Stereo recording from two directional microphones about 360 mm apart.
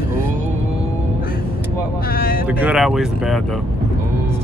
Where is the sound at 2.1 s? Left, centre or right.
Left.